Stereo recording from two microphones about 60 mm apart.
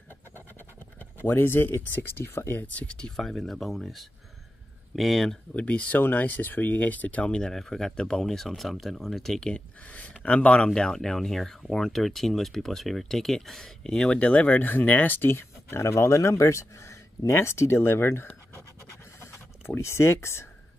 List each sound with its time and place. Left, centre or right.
1.2 s speech: left
2.6 s speech: left
3.2 s speech: centre
5.5 s speech: left; by 9.5 s centre
9.5 s speech: left
19.1 s a sound: left